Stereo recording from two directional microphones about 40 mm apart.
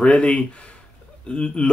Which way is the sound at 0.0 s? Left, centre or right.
Left.